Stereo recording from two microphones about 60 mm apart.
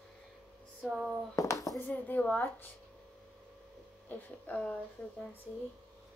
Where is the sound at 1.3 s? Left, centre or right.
Left.